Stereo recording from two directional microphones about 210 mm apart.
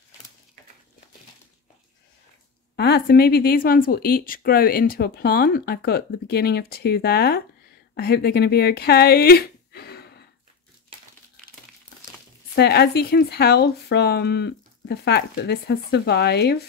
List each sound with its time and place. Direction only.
2.7 s speech: 50° left (ahead or behind)
12.5 s speech: 50° left (ahead or behind)